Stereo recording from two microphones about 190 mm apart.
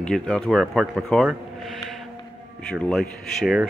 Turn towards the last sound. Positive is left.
turn(degrees=-5)  # may be behind; listen again after turning